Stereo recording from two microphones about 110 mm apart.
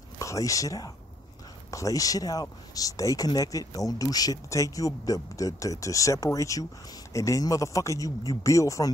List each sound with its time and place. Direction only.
0.2 s speech: 30° left (ahead or behind)